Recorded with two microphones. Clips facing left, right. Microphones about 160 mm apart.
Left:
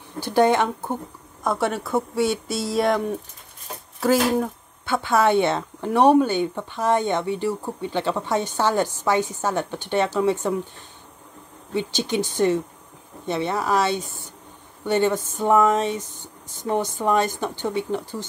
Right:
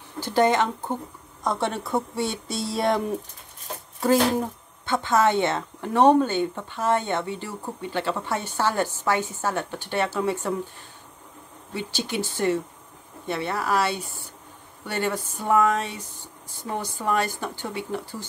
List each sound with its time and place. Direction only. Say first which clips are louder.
0.2 s speech: left 2 dB; 10° left (ahead or behind)
4.0 s speech: left 1 dB; centre (ahead or behind); by 10.5 s 20° left (ahead or behind)
11.7 s speech: left 5 dB; 20° left (ahead or behind)